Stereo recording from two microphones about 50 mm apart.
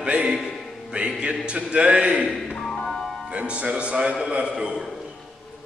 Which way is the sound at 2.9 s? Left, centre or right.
Centre.